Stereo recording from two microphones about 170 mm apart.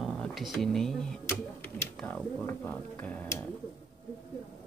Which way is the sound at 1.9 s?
5° left (ahead or behind).